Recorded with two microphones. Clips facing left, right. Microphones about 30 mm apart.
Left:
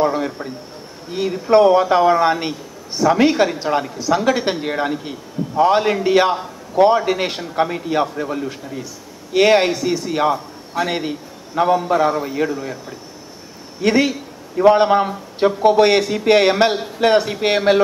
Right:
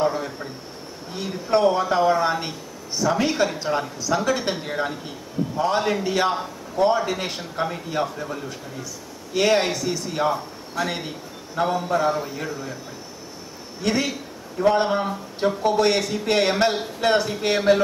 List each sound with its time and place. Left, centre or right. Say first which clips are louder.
0.1 s a sound: left 6 dB; left
1.1 s a man's voice: left 8 dB; centre; by 7.0 s left
7.0 s a man's voice: left 6 dB; left
13.7 s speech: left 7 dB; centre